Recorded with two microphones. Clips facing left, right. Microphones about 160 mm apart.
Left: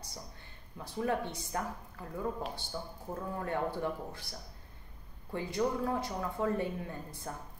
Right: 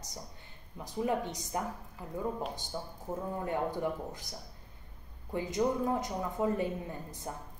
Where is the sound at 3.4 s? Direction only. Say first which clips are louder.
Even; 15° right (ahead or behind).